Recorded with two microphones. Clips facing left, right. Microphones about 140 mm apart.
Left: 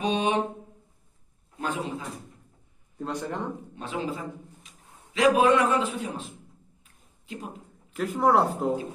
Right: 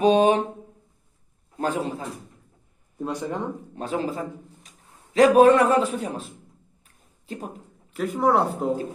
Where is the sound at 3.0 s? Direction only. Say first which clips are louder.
Right 3 dB; 10° right (ahead or behind).